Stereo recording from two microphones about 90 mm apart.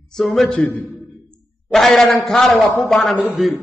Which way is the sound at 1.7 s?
5° left (ahead or behind).